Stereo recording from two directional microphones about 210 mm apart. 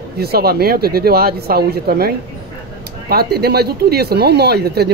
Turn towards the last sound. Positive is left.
turn(degrees=-50)  # may be behind; listen again after turning